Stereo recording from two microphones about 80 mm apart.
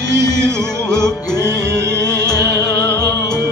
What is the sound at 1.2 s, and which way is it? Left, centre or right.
Music, left.